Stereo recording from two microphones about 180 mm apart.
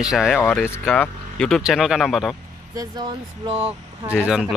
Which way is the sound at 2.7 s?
20° right (ahead or behind).